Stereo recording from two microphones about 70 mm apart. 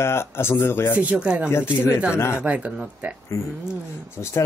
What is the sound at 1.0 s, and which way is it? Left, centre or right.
A man's voice, centre.